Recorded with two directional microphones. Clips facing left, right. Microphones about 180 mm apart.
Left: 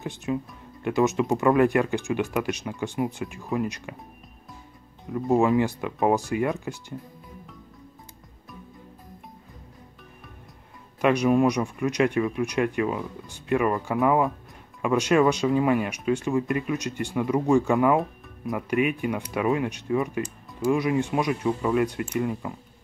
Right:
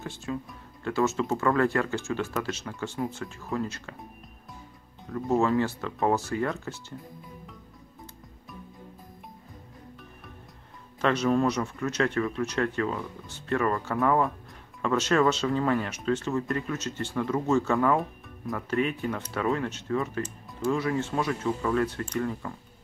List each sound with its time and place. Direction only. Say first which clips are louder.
0.0 s speech: left 5 dB; 20° left (ahead or behind)
5.3 s speech: left 3 dB; 15° left (ahead or behind)
11.0 s speech: left 4 dB; 15° left (ahead or behind)